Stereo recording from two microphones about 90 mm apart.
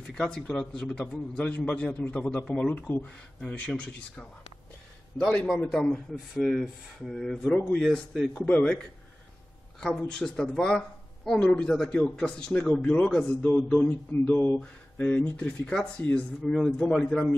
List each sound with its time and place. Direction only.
0.0 s speech: 10° left (ahead or behind)
13.4 s mantra: 20° left (ahead or behind)
14.6 s speech: 15° left (ahead or behind)